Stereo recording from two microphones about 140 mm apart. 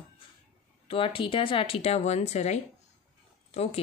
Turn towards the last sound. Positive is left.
turn(degrees=45)  # may be behind; listen again after turning